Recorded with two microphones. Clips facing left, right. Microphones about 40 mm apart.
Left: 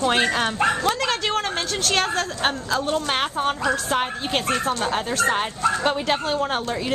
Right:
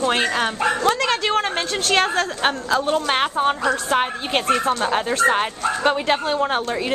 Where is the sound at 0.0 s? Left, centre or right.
Centre.